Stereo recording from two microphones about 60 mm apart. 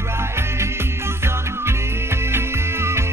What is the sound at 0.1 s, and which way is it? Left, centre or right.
Music, right.